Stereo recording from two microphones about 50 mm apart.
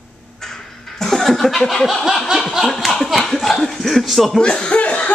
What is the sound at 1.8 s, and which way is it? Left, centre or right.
Snicker, centre.